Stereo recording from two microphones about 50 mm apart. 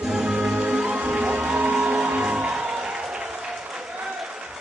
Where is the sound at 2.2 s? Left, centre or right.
Centre.